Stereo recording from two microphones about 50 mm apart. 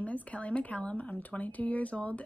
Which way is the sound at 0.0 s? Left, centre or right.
Left.